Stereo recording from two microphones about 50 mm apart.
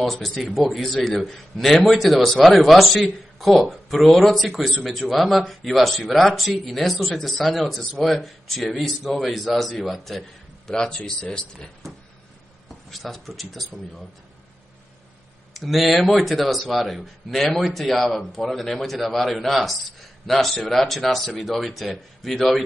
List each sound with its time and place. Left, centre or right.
0.0 s speech: centre
10.7 s speech: centre
12.9 s speech: centre
15.5 s speech: centre